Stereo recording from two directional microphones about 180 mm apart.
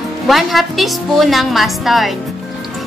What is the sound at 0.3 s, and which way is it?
A woman's voice, centre (ahead or behind).